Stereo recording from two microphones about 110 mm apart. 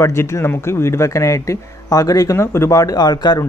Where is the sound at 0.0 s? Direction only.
25° left (ahead or behind).